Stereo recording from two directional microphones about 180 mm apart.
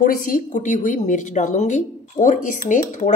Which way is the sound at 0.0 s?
45° left (ahead or behind).